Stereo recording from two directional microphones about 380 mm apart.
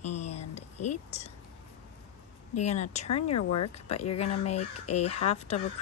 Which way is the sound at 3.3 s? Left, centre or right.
Left.